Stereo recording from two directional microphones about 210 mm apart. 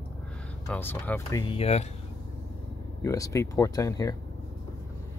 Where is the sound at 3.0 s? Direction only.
15° left (ahead or behind).